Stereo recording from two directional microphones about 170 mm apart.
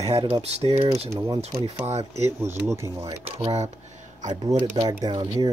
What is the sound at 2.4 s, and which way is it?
Speech, 15° right (ahead or behind).